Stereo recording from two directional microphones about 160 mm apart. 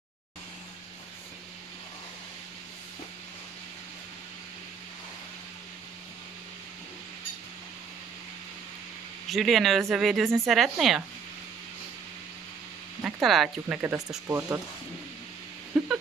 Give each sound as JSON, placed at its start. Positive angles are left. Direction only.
{"t": 9.3, "sound": "speech", "side_deg": 0}
{"t": 13.0, "sound": "speech", "side_deg": 0}
{"t": 13.8, "sound": "speech", "side_deg": -20}
{"t": 15.7, "sound": "a sound", "side_deg": 0}